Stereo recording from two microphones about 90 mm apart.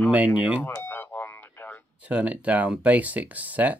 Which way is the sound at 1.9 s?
15° right (ahead or behind).